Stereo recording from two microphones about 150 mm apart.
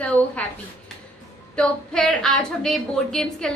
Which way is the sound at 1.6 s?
5° left (ahead or behind).